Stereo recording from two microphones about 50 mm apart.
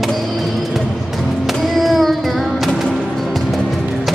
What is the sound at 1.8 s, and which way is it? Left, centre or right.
Child singing, centre.